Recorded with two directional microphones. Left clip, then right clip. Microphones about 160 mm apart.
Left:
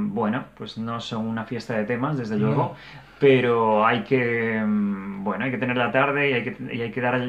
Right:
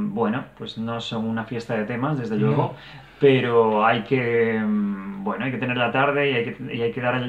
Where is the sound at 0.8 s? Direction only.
20° left (ahead or behind).